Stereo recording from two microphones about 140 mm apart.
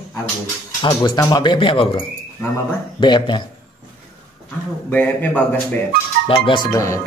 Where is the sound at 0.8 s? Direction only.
30° left (ahead or behind).